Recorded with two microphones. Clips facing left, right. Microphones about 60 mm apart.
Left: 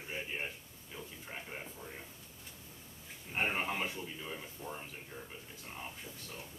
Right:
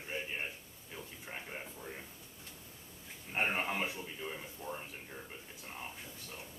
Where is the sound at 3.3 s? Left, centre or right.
Centre.